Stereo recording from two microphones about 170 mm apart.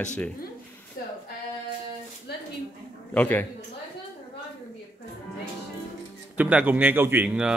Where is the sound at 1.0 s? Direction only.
55° left (ahead or behind).